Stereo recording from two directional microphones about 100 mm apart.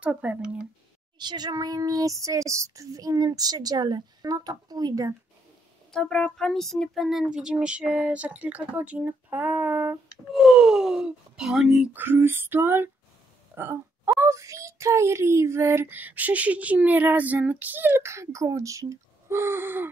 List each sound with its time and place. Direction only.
0.0 s speech: 15° right (ahead or behind)
1.1 s speech: 45° right (ahead or behind)
5.9 s speech: 5° left (ahead or behind); by 9.9 s 15° right (ahead or behind)
10.3 s speech: 5° right (ahead or behind)
11.9 s a child's voice: 20° right (ahead or behind)